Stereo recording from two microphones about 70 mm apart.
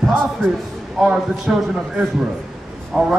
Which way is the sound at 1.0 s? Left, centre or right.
Centre.